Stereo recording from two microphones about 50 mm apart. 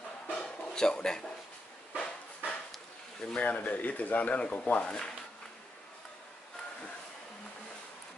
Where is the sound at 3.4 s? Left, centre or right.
Left.